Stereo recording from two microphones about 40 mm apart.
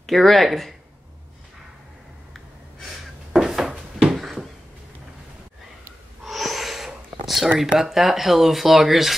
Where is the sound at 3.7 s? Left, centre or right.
Right.